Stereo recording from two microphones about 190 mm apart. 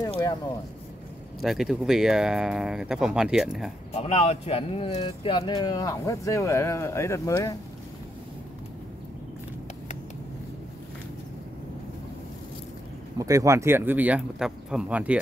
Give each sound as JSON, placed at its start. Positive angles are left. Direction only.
{"t": 1.4, "sound": "speech", "side_deg": 0}
{"t": 3.9, "sound": "speech", "side_deg": 30}
{"t": 13.2, "sound": "speech", "side_deg": -15}